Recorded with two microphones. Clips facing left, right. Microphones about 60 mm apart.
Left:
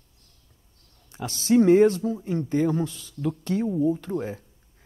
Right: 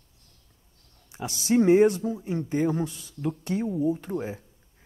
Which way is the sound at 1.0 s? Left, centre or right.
Centre.